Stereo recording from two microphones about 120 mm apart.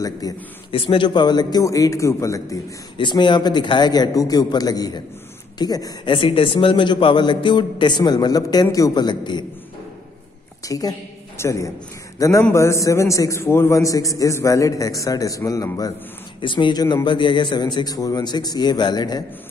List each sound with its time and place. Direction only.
0.0 s a man's voice: 30° left (ahead or behind)
0.7 s a man's voice: 50° left (ahead or behind); by 2.6 s 25° left (ahead or behind)
3.0 s a man's voice: 40° left (ahead or behind)
6.1 s a man's voice: 50° left (ahead or behind)
10.6 s a woman's voice: 30° left (ahead or behind)
16.3 s a man's voice: 40° left (ahead or behind)